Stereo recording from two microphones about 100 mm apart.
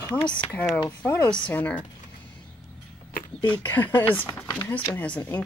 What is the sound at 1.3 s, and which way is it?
Speech, 15° left (ahead or behind).